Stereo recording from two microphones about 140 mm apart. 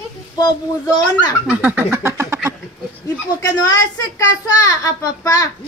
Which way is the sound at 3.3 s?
25° left (ahead or behind).